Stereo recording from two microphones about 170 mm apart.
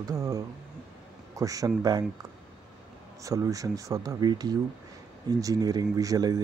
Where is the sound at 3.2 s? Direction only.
20° right (ahead or behind).